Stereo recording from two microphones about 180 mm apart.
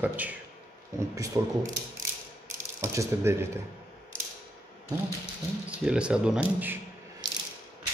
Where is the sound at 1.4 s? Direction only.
20° right (ahead or behind).